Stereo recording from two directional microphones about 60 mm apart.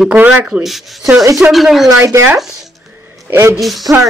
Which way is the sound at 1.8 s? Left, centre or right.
Right.